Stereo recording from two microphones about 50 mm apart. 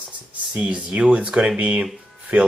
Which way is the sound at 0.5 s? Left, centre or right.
Right.